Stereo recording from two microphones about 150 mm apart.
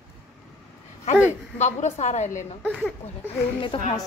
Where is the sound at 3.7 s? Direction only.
35° left (ahead or behind).